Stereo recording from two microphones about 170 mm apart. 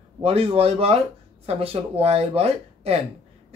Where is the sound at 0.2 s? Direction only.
35° right (ahead or behind).